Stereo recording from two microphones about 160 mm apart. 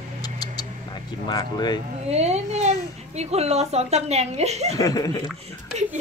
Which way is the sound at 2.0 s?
40° right (ahead or behind).